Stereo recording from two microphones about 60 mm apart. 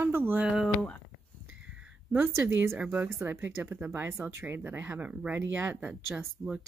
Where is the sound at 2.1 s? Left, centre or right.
Right.